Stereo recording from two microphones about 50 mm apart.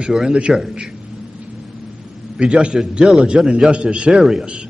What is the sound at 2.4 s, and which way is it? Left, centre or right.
Speech, right.